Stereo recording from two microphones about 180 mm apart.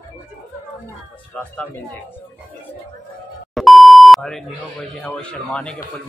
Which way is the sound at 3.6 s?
Centre (ahead or behind).